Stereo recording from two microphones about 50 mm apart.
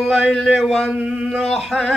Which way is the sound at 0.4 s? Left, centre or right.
Centre.